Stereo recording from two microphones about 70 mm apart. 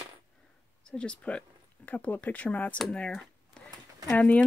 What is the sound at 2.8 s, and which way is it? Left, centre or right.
Speech, centre.